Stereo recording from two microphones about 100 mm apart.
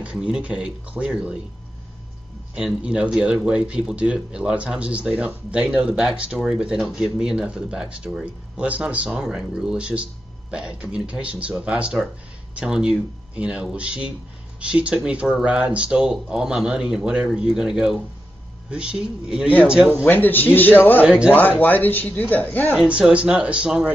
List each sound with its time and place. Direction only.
0.0 s speech: 10° right (ahead or behind)
2.5 s speech: 10° right (ahead or behind)
20.1 s a man's voice: 20° left (ahead or behind)
21.0 s speech: 15° right (ahead or behind)
21.3 s speech: 20° left (ahead or behind)
22.8 s speech: 10° right (ahead or behind)